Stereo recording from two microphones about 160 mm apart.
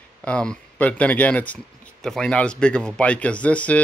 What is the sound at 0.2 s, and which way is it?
Speech, 5° left (ahead or behind).